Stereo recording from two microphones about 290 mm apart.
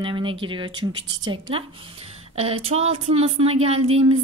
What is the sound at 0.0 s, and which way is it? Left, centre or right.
A woman's voice, centre.